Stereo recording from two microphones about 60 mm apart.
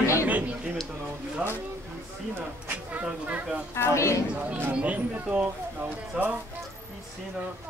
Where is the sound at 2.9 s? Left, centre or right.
Right.